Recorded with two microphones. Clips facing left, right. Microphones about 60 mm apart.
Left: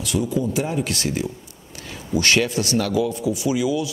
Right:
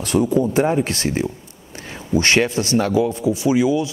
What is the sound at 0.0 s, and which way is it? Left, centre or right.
A man's voice, right.